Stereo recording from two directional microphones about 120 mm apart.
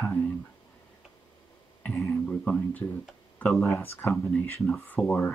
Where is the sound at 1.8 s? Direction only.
5° left (ahead or behind).